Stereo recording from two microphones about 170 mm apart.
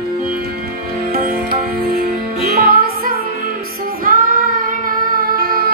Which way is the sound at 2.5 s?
60° right (ahead or behind).